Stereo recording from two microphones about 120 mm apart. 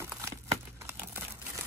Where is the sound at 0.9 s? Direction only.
20° right (ahead or behind).